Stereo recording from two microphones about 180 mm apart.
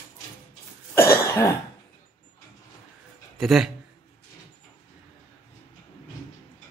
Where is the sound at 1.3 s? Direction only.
15° left (ahead or behind).